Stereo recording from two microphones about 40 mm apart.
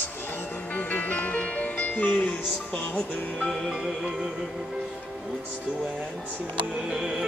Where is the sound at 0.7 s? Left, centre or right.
Left.